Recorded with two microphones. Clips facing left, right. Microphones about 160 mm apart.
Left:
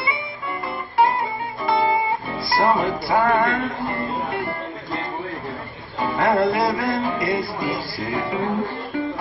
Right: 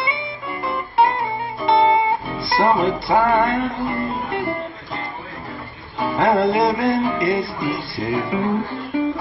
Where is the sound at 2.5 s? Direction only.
25° right (ahead or behind).